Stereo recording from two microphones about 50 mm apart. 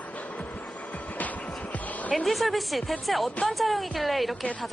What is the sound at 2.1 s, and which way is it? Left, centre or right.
A woman's voice, centre.